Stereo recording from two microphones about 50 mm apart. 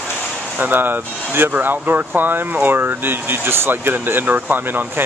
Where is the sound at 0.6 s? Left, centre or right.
Right.